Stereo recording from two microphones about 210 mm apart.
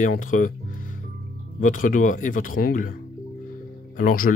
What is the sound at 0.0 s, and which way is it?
Music, 40° left (ahead or behind).